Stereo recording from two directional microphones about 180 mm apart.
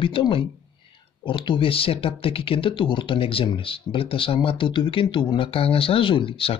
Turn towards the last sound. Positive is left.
turn(degrees=30)  # may be behind; listen again after turning